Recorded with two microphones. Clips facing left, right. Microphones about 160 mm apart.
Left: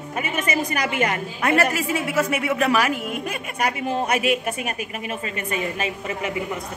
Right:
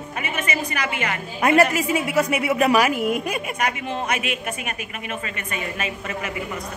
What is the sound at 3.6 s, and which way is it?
Speech, 35° left (ahead or behind).